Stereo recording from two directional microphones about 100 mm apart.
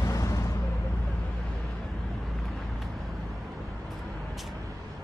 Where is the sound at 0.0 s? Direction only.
35° left (ahead or behind).